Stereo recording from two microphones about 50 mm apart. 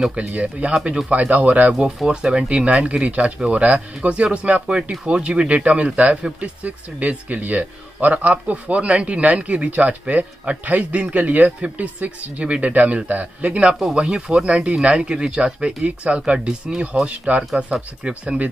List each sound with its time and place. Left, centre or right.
0.0 s speech: centre
2.0 s speech: centre